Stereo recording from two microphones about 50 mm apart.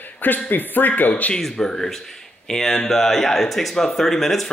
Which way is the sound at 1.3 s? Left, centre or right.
Centre.